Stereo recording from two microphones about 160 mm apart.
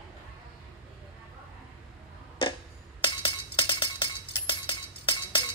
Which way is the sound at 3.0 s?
30° left (ahead or behind).